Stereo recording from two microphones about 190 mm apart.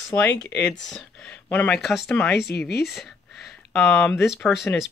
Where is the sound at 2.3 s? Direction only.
60° left (ahead or behind).